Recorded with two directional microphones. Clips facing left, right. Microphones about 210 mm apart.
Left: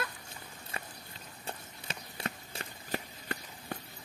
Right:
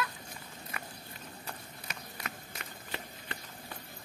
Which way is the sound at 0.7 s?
30° left (ahead or behind).